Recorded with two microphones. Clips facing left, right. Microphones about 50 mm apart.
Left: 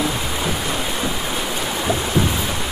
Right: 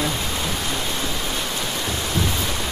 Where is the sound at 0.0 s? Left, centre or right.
Centre.